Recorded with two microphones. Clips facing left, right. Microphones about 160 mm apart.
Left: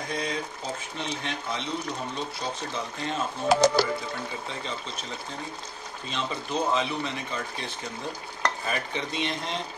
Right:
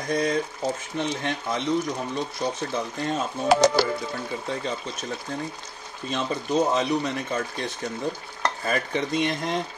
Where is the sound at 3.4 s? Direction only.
80° right.